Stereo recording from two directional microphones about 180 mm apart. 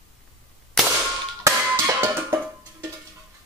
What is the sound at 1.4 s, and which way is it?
Music, 15° right (ahead or behind).